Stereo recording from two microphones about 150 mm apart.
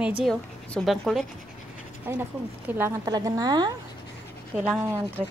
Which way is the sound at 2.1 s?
15° right (ahead or behind).